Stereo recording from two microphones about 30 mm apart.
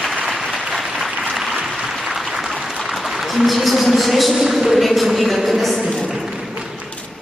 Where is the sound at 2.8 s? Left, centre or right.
Centre.